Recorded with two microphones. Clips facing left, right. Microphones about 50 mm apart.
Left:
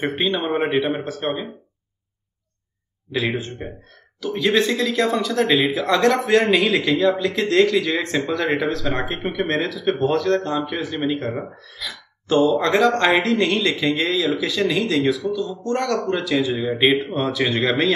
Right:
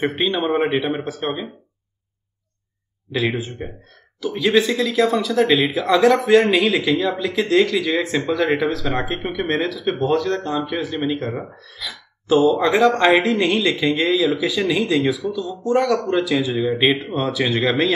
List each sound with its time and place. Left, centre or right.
0.0 s speech: centre
3.1 s speech: centre